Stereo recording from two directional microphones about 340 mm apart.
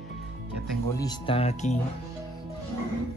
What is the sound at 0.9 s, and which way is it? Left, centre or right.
Speech, centre.